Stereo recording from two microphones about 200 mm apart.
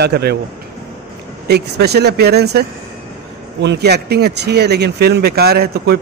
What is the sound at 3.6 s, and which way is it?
A man's voice, 55° right (ahead or behind).